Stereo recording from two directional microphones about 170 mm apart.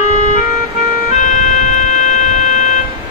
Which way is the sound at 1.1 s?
45° left (ahead or behind).